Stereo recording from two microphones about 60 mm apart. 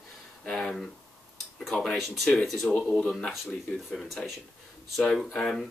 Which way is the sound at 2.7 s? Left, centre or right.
Left.